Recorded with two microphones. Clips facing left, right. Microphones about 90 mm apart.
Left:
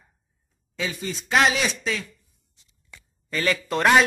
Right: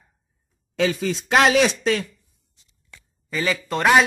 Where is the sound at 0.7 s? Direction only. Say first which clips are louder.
Right 8 dB; 75° right (ahead or behind).